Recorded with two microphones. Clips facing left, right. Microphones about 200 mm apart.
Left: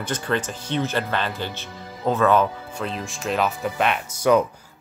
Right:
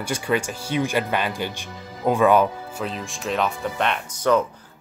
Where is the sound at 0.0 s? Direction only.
10° right (ahead or behind).